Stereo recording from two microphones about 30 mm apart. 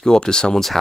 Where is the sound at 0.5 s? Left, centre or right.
Centre.